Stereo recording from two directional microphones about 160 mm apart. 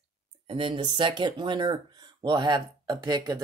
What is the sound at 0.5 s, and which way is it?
Speech, 30° right (ahead or behind).